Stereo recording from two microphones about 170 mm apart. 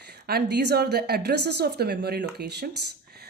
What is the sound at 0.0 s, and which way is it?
A woman's voice, 75° right (ahead or behind).